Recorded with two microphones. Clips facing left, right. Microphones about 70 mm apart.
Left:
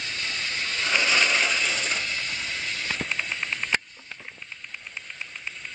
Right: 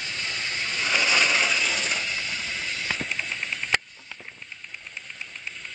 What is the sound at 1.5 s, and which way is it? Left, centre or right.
Coin, centre.